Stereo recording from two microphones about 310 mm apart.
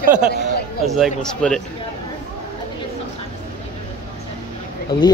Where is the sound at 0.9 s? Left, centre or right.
Centre.